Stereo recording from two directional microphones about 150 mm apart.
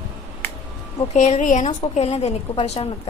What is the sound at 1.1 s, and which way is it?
A woman's voice, 50° left (ahead or behind).